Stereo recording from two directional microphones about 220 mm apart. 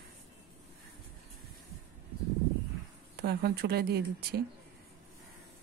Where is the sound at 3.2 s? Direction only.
50° right (ahead or behind).